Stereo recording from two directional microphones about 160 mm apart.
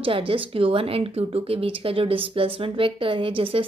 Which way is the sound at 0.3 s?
35° right (ahead or behind).